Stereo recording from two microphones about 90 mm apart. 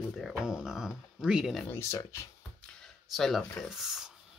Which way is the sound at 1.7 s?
30° left (ahead or behind).